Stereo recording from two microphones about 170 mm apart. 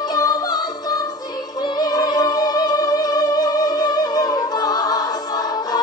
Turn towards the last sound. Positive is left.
turn(degrees=25)  # may be behind; listen again after turning